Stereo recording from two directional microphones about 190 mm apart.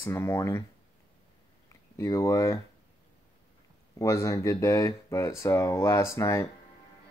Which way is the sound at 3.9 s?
15° left (ahead or behind).